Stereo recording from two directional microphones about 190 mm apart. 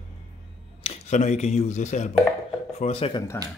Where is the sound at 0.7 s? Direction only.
30° left (ahead or behind).